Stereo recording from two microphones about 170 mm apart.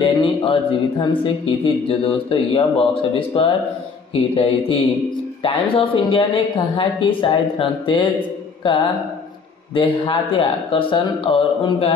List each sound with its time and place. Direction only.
0.0 s speech: 30° left (ahead or behind)